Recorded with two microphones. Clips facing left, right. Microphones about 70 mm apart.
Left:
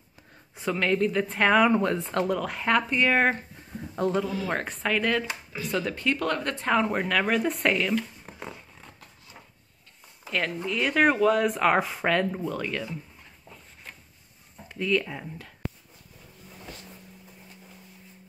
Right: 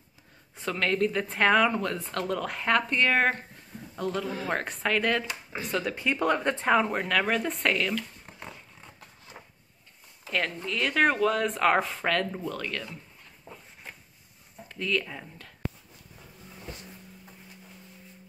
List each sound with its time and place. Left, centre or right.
0.6 s speech: centre
1.7 s speech: left
2.2 s speech: centre
4.0 s speech: left
4.5 s speech: centre
6.7 s speech: centre
7.9 s a sound: centre
10.2 s a sound: centre
10.5 s speech: centre
13.5 s a sound: centre
14.7 s speech: centre